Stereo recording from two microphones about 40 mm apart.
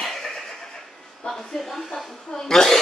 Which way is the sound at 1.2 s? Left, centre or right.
Centre.